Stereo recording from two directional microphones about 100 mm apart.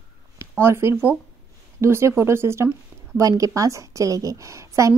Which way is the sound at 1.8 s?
25° right (ahead or behind).